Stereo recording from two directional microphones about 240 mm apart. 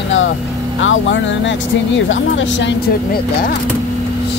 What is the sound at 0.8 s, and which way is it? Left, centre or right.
Speech, left.